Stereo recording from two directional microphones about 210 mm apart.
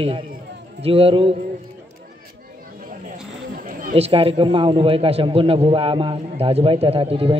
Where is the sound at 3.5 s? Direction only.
45° right (ahead or behind).